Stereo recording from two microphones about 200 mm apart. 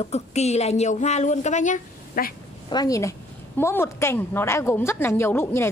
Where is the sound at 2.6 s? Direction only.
20° left (ahead or behind).